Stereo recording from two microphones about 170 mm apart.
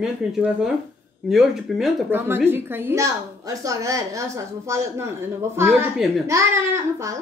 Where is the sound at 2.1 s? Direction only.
15° right (ahead or behind).